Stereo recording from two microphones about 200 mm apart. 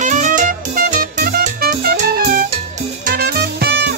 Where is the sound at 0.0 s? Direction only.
40° right (ahead or behind); by 3.9 s 55° right (ahead or behind).